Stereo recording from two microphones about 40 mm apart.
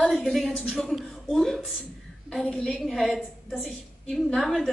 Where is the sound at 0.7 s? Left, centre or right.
Centre.